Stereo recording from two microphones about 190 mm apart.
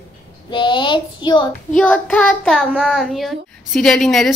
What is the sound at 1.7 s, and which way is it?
A child's voice, 5° left (ahead or behind).